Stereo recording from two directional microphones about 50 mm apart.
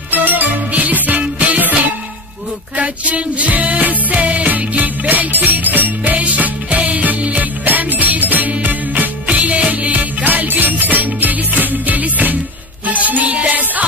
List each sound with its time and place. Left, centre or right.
0.1 s music: right